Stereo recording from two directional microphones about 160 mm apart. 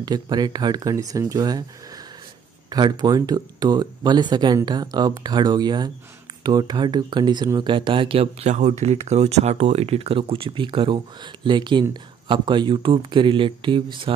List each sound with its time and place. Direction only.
0.0 s speech: 25° right (ahead or behind)
2.7 s speech: 25° right (ahead or behind)